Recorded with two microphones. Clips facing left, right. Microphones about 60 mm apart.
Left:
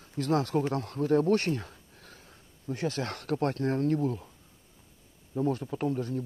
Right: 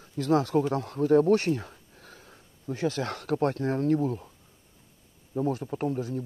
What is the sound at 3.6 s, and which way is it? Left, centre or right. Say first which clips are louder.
Speech: right 1 dB; centre.